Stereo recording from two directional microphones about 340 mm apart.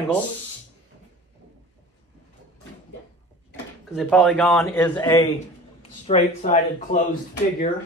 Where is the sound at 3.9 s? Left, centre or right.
Centre.